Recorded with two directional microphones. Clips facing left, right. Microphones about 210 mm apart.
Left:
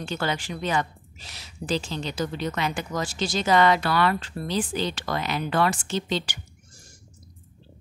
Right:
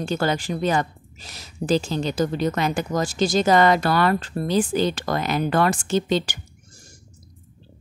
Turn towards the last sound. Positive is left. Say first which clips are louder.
# right 6 dB
turn(degrees=-50)  # may be behind; listen again after turning